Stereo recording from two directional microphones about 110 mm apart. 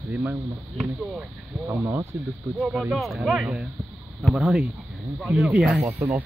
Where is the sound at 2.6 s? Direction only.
5° right (ahead or behind).